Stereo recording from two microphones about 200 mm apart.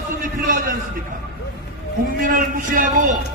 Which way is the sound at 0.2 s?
45° right (ahead or behind).